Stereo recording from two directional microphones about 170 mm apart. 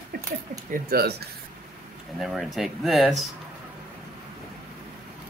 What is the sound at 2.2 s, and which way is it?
Speech, centre (ahead or behind).